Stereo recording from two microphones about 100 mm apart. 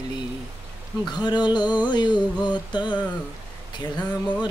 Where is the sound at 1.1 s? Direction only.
45° left (ahead or behind).